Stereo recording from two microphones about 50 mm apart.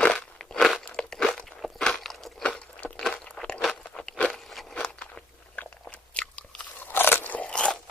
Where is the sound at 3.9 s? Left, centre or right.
Left.